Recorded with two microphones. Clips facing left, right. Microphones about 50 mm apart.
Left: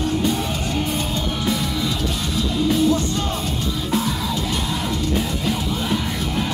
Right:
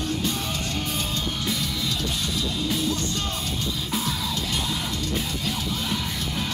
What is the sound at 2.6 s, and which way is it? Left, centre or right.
Music, centre.